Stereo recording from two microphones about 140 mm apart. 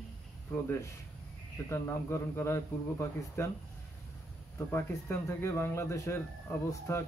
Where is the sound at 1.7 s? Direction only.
20° left (ahead or behind).